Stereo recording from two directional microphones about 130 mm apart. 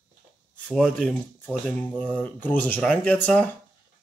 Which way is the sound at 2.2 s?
15° left (ahead or behind).